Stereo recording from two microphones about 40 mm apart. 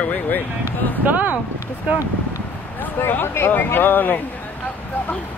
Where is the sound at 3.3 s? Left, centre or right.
Left.